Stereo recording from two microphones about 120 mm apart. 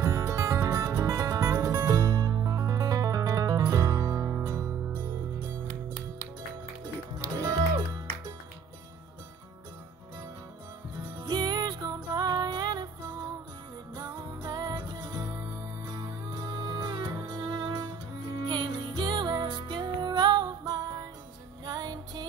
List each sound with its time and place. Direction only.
0.0 s music: 25° right (ahead or behind)
5.7 s music: 75° right (ahead or behind)
7.2 s music: 30° right (ahead or behind)
11.1 s music: 30° right (ahead or behind)
13.9 s music: 30° right (ahead or behind)